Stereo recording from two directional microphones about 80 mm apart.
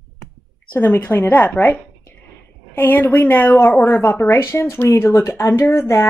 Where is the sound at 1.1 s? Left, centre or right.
Left.